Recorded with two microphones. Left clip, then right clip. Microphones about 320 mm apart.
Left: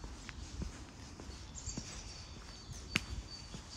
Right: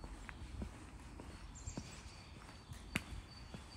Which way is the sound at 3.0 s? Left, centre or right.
Centre.